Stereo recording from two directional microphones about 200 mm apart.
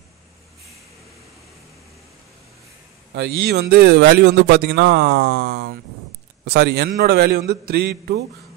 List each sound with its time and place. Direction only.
3.2 s a man's voice: 55° right (ahead or behind)